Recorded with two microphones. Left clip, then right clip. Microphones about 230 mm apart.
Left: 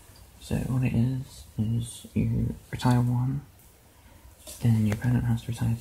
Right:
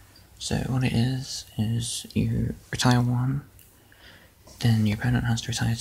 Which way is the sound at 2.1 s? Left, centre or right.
Centre.